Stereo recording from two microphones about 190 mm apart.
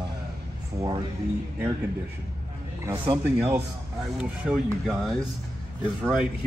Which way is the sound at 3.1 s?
10° right (ahead or behind).